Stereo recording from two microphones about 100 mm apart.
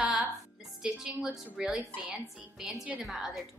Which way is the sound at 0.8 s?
10° right (ahead or behind).